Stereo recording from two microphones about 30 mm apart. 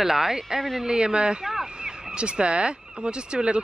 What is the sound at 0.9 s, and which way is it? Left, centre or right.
Speech, right.